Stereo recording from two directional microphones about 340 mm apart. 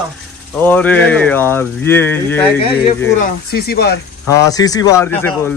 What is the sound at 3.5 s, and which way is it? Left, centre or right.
Speech, left.